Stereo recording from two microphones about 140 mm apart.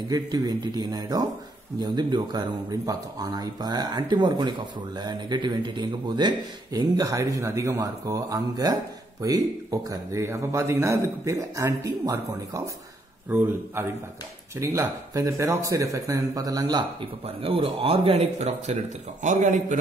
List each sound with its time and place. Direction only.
0.1 s speech: 25° right (ahead or behind)
13.3 s a man's voice: 10° right (ahead or behind); by 18.8 s 50° right (ahead or behind)
19.2 s a man's voice: 60° right (ahead or behind)